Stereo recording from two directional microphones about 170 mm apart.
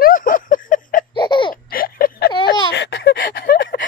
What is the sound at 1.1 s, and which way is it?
Laughter, 30° left (ahead or behind).